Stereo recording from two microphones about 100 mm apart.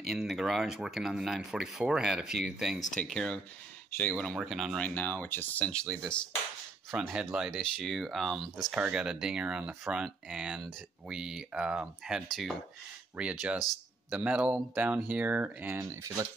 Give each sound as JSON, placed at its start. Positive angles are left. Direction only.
{"t": 0.0, "sound": "speech", "side_deg": -5}
{"t": 3.9, "sound": "speech", "side_deg": 20}
{"t": 4.4, "sound": "speech", "side_deg": -5}
{"t": 4.7, "sound": "speech", "side_deg": 15}
{"t": 7.0, "sound": "speech", "side_deg": -10}
{"t": 12.3, "sound": "speech", "side_deg": 0}
{"t": 13.1, "sound": "speech", "side_deg": -10}
{"t": 15.8, "sound": "speech", "side_deg": -30}